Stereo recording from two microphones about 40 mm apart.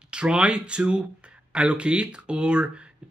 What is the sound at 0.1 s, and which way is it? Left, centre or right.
Speech, right.